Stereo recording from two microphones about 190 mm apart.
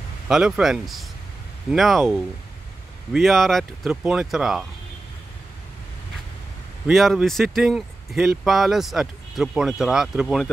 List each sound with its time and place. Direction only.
0.3 s speech: centre (ahead or behind)
6.9 s speech: centre (ahead or behind)